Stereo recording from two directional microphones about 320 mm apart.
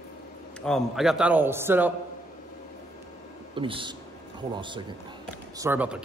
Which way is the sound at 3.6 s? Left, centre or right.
Centre.